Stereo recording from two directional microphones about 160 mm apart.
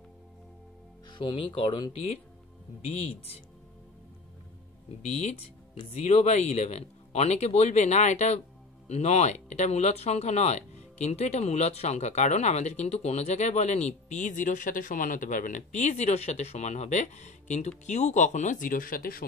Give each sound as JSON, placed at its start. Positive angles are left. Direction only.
{"t": 1.1, "sound": "speech", "side_deg": 30}
{"t": 5.0, "sound": "speech", "side_deg": 45}